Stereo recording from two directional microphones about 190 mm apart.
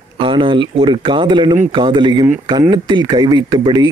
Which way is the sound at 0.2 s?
25° right (ahead or behind).